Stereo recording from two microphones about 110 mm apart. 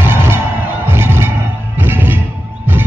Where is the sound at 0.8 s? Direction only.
20° right (ahead or behind).